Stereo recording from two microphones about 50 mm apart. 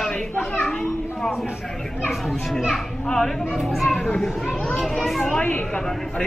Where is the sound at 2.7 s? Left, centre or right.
Centre.